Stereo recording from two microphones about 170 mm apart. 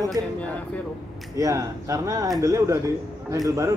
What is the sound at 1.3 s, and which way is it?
Speech, 20° right (ahead or behind).